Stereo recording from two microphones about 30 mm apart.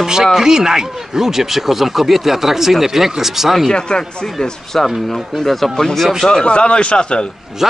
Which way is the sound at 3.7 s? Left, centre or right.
Left.